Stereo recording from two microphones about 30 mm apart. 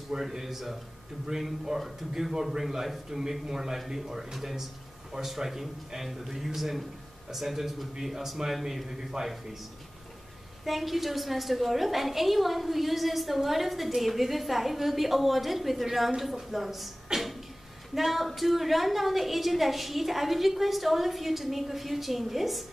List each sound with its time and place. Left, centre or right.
0.2 s a man's voice: centre
9.2 s a man's voice: right
10.6 s a woman's voice: centre